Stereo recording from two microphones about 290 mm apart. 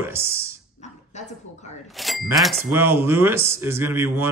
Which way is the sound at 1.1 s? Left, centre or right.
Left.